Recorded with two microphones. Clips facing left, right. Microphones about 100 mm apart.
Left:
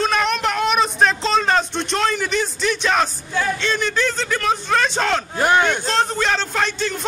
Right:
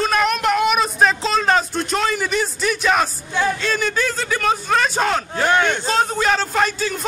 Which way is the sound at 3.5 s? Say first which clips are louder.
Even; 5° right (ahead or behind).